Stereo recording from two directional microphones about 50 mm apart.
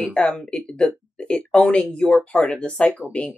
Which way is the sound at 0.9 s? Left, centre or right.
Left.